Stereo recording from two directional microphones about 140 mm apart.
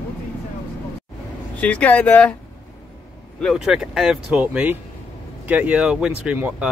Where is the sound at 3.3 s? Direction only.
Centre (ahead or behind).